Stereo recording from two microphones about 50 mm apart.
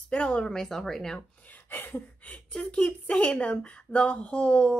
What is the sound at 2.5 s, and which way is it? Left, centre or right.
A woman's voice, centre.